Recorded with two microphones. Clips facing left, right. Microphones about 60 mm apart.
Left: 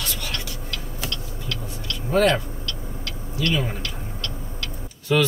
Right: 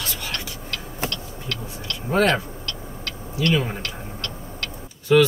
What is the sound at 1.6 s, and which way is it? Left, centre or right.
Speech, right.